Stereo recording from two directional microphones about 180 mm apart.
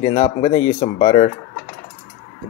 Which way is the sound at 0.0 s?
35° left (ahead or behind).